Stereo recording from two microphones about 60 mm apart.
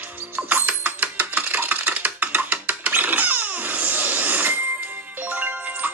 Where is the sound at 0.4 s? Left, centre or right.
Right.